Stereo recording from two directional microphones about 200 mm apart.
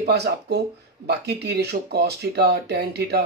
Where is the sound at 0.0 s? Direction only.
55° right (ahead or behind).